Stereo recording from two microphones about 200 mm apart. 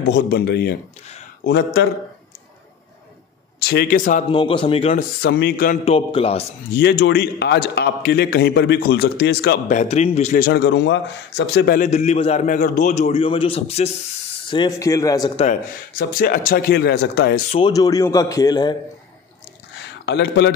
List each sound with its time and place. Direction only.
0.1 s a man's voice: 55° left (ahead or behind)
3.5 s a man's voice: 55° left (ahead or behind)
4.3 s a man's voice: 25° left (ahead or behind)
5.3 s a man's voice: 50° left (ahead or behind)
5.9 s a man's voice: 30° left (ahead or behind)
6.7 s a man's voice: 55° left (ahead or behind)
9.7 s a man's voice: 35° left (ahead or behind); by 11.8 s 55° left (ahead or behind)
11.8 s a man's voice: 35° left (ahead or behind)
14.5 s a man's voice: 20° left (ahead or behind)
16.0 s a man's voice: 45° left (ahead or behind)
17.5 s a man's voice: 25° left (ahead or behind)
20.1 s a man's voice: 60° left (ahead or behind)